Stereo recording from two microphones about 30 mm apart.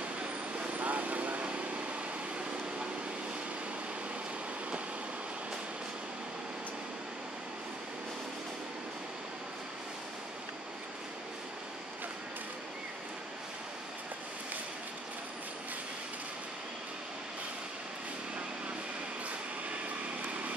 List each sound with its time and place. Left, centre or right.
0.7 s vehicle: right